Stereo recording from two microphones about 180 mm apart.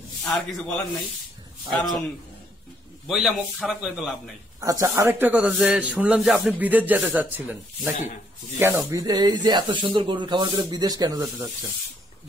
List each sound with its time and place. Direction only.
0.2 s a man's voice: 5° left (ahead or behind)
3.1 s a man's voice: centre (ahead or behind)
4.6 s a man's voice: 15° right (ahead or behind)